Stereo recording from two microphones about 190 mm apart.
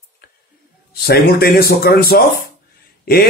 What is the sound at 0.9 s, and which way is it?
Speech, 55° left (ahead or behind).